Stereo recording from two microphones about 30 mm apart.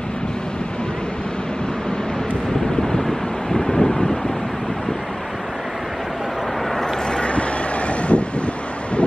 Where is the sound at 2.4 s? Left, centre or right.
Centre.